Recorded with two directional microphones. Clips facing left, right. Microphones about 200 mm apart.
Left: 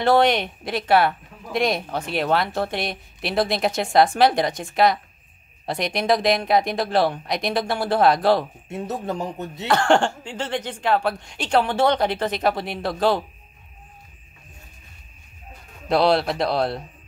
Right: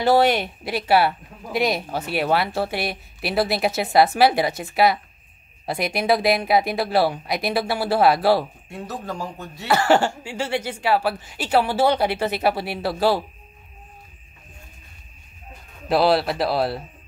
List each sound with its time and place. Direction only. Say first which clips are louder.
0.0 s speech: even; 5° right (ahead or behind)
8.6 s speech: left 4 dB; 20° left (ahead or behind)
9.7 s speech: even; 5° right (ahead or behind)
15.9 s speech: even; 5° right (ahead or behind)